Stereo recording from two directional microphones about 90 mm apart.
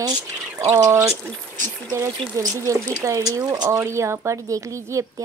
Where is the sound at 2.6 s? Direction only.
35° right (ahead or behind).